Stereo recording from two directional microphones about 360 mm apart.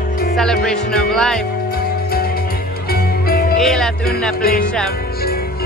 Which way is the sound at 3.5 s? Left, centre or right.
Centre.